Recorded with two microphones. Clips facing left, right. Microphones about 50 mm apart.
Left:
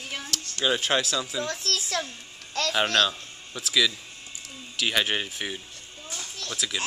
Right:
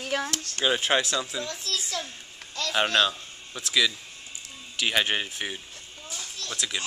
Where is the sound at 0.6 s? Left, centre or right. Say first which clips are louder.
Right 1 dB; centre.